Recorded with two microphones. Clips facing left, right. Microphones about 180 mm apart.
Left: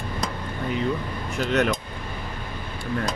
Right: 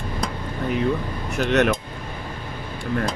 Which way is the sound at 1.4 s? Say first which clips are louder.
Right 3 dB; 70° right (ahead or behind).